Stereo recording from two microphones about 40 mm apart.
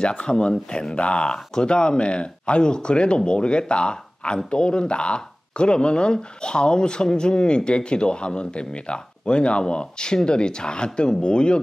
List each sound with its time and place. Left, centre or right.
0.0 s speech: left